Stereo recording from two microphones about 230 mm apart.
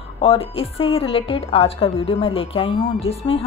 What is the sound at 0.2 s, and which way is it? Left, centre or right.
Speech, left.